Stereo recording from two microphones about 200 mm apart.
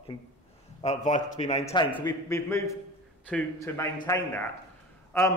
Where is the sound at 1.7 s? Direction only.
20° left (ahead or behind).